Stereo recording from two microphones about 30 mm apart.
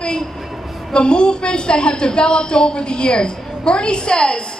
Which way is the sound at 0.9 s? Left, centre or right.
Left.